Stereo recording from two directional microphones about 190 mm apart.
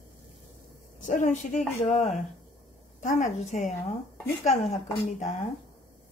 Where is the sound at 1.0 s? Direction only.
40° left (ahead or behind).